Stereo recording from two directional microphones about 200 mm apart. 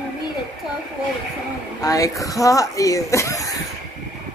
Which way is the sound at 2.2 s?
15° left (ahead or behind).